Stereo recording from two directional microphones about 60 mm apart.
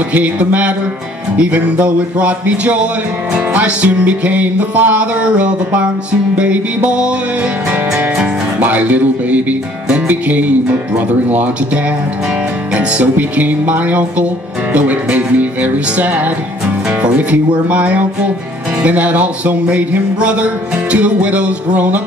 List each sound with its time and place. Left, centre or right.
0.1 s music: right
8.5 s music: right